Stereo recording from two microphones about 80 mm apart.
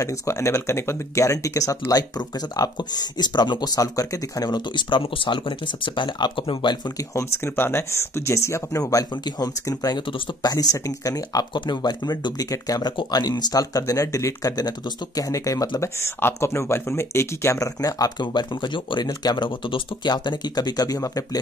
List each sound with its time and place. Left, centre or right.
0.0 s speech: left
7.2 s speech: left
11.5 s speech: left
12.9 s speech: left
15.8 s speech: left
17.8 s speech: left
18.2 s speech: left
19.0 s speech: left